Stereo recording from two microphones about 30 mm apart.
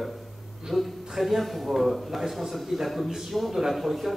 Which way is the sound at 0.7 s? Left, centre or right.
Centre.